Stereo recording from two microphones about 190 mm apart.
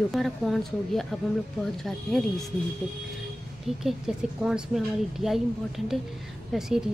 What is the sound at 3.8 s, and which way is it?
Speech, 5° right (ahead or behind).